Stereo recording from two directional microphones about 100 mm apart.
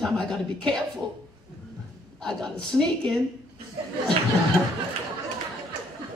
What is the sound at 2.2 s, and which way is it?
Speech, 5° left (ahead or behind).